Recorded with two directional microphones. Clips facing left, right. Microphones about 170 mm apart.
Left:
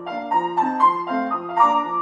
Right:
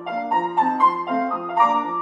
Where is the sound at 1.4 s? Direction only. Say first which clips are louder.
Left 3 dB; centre (ahead or behind).